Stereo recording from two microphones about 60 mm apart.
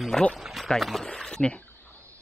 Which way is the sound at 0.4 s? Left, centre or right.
Centre.